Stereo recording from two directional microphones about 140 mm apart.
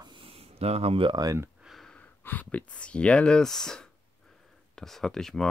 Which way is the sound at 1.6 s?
Centre (ahead or behind).